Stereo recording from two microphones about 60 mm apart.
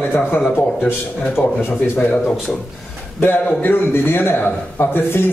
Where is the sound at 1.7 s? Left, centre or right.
Left.